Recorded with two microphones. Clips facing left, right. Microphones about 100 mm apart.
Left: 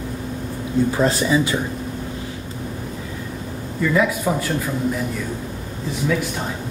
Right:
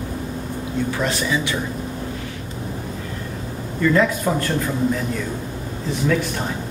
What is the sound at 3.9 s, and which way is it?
Speech, 10° left (ahead or behind).